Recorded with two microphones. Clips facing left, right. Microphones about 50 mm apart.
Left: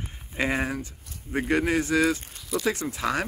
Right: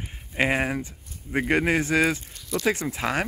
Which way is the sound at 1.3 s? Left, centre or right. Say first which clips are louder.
Right 2 dB; right.